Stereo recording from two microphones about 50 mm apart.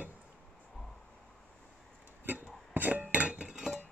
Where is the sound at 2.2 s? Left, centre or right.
Right.